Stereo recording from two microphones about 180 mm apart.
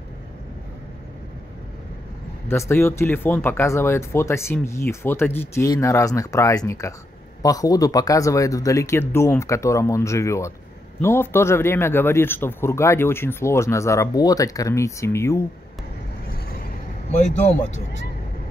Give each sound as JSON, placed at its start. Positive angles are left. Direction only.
{"t": 2.4, "sound": "speech", "side_deg": 15}
{"t": 16.3, "sound": "vehicle", "side_deg": 55}
{"t": 17.1, "sound": "speech", "side_deg": 40}